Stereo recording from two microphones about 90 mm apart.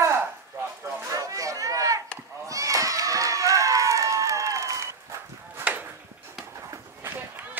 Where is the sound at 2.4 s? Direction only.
40° right (ahead or behind).